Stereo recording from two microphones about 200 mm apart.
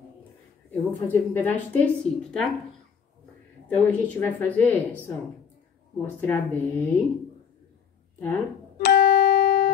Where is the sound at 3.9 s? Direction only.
10° left (ahead or behind).